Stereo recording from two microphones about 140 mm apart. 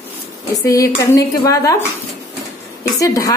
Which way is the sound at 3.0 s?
25° left (ahead or behind).